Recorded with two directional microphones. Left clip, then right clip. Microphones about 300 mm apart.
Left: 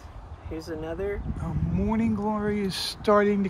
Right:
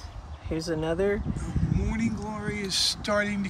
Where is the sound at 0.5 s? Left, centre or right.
Right.